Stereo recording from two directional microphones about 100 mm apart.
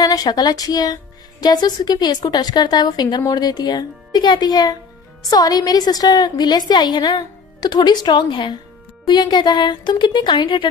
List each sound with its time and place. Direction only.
0.0 s a woman's voice: 40° left (ahead or behind)